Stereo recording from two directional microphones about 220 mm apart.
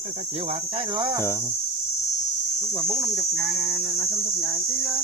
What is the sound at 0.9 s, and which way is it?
Speech, 20° right (ahead or behind).